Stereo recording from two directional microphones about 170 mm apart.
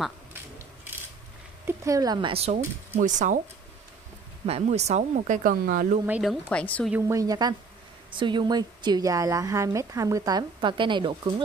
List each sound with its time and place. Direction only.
1.7 s a woman's voice: 20° right (ahead or behind)
3.0 s speech: 50° right (ahead or behind)
4.5 s speech: 40° right (ahead or behind); by 5.9 s 55° right (ahead or behind)
6.0 s speech: 10° right (ahead or behind)
6.5 s a woman's voice: 5° left (ahead or behind)
7.0 s a woman's voice: 20° right (ahead or behind)